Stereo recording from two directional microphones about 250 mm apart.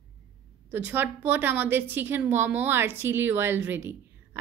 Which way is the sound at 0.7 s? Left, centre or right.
Centre.